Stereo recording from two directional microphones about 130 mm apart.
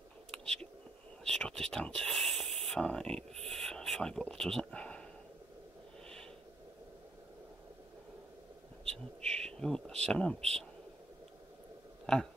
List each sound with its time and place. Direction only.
0.3 s whispering: 5° left (ahead or behind)
1.2 s speech: 5° left (ahead or behind)
8.9 s a sound: 5° left (ahead or behind)
10.0 s speech: 5° left (ahead or behind)